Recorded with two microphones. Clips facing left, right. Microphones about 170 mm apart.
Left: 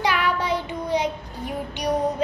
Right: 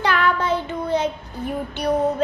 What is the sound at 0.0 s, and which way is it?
Child singing, 10° left (ahead or behind).